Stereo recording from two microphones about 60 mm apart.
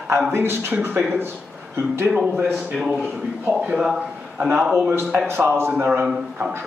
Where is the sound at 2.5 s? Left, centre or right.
Centre.